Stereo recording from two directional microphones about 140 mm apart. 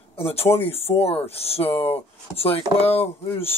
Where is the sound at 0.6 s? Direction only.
45° left (ahead or behind).